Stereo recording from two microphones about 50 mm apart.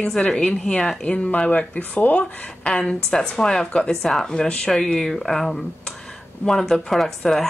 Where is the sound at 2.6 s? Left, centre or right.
Centre.